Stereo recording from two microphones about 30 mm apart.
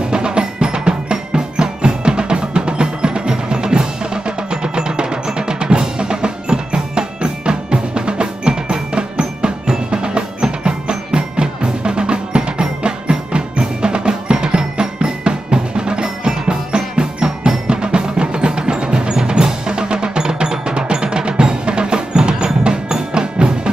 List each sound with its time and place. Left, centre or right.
0.1 s percussion: right
22.7 s music: right